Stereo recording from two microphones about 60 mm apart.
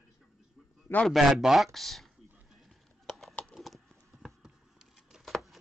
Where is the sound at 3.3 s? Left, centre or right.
Left.